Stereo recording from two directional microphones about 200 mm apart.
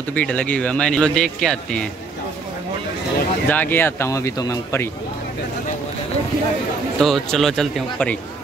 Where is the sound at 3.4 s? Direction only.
10° left (ahead or behind).